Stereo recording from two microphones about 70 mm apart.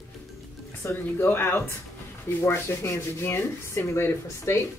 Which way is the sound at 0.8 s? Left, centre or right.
Left.